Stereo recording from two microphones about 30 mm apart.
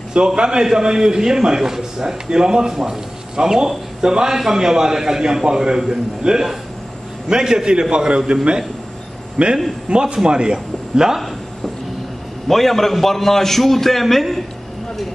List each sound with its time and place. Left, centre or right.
0.4 s a man's voice: right
9.4 s a man's voice: right
12.4 s a man's voice: centre